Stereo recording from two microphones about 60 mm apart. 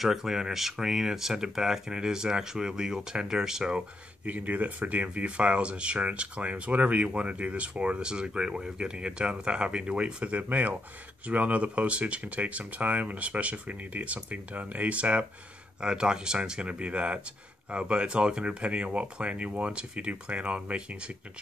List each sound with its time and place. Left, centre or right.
0.0 s speech: centre
4.3 s speech: right